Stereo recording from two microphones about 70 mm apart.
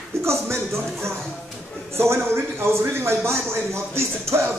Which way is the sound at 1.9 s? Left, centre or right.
Right.